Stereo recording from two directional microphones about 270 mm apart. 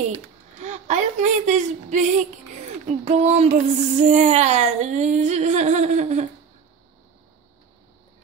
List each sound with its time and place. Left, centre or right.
0.6 s a woman's voice: right